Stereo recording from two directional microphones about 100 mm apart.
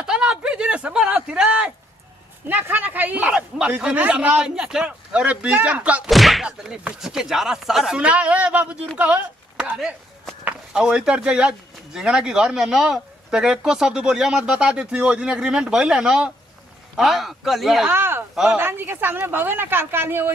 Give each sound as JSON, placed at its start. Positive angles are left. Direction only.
{"t": 0.0, "sound": "a sound", "side_deg": -10}
{"t": 2.4, "sound": "speech", "side_deg": -20}
{"t": 6.0, "sound": "speech", "side_deg": 0}
{"t": 10.7, "sound": "speech", "side_deg": -10}
{"t": 17.8, "sound": "speech", "side_deg": -25}
{"t": 18.3, "sound": "speech", "side_deg": -5}
{"t": 18.6, "sound": "speech", "side_deg": -20}